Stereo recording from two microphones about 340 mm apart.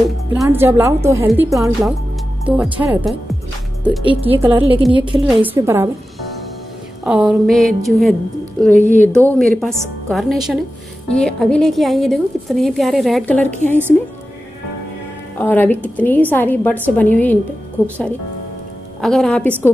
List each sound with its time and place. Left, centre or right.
0.3 s a woman's voice: centre
4.0 s a woman's voice: centre
7.1 s a woman's voice: centre
8.7 s speech: right
9.0 s a woman's voice: centre
15.3 s a woman's voice: centre
17.8 s a woman's voice: centre